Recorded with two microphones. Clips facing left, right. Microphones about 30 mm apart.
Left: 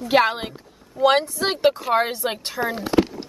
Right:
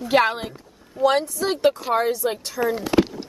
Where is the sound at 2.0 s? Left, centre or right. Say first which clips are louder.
Right 1 dB; left.